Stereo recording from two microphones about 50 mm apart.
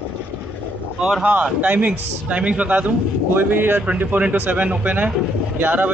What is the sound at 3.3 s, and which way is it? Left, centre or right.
A man's voice, right.